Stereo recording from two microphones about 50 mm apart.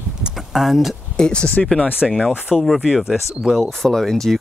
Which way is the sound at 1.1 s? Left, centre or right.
Centre.